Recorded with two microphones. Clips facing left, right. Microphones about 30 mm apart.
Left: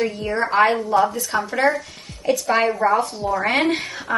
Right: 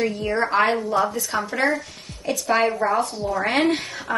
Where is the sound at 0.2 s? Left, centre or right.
Centre.